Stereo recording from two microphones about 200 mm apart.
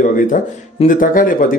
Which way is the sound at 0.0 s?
40° left (ahead or behind).